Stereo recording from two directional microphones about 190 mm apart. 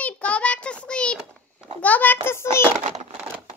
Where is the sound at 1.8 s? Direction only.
10° left (ahead or behind).